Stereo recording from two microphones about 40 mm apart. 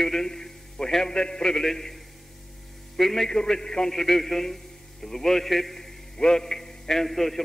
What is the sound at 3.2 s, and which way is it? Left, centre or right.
A man's voice, centre.